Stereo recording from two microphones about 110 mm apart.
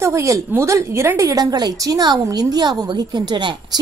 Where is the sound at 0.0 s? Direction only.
25° right (ahead or behind).